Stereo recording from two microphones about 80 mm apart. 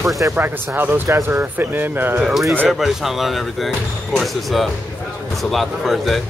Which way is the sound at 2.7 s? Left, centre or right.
Centre.